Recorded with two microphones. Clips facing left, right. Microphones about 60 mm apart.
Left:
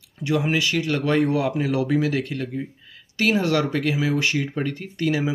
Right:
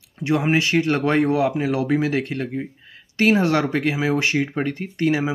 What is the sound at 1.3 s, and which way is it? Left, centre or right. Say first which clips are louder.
Speech: right 2 dB; centre.